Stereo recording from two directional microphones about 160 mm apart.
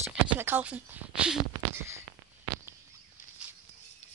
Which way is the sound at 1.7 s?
15° right (ahead or behind).